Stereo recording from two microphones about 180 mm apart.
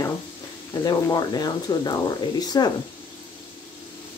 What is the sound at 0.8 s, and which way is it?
Speech, 20° left (ahead or behind).